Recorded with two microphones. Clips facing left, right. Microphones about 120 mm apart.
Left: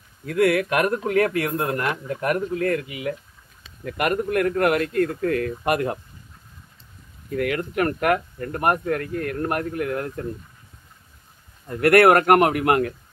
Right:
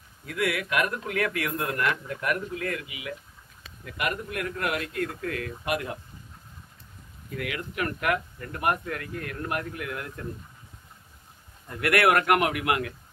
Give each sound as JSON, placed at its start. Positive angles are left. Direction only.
{"t": 0.2, "sound": "a man's voice", "side_deg": 45}
{"t": 7.2, "sound": "a man's voice", "side_deg": 50}
{"t": 11.6, "sound": "a man's voice", "side_deg": 45}